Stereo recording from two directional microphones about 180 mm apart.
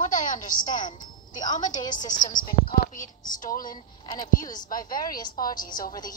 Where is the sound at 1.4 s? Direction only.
45° left (ahead or behind).